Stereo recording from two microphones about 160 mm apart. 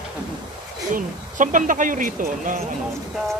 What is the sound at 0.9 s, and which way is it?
Speech, 55° right (ahead or behind).